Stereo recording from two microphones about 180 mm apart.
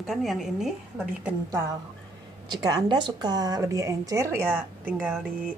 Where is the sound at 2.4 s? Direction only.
25° right (ahead or behind).